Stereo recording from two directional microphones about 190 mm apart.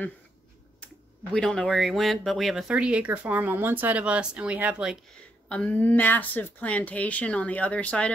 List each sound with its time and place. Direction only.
1.3 s speech: 5° left (ahead or behind)
5.5 s speech: 5° left (ahead or behind)